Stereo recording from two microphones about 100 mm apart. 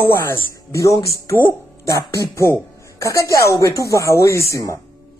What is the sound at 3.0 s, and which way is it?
Speech, 30° left (ahead or behind).